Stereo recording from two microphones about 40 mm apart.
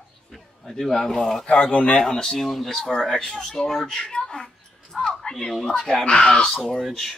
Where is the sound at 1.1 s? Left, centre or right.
Centre.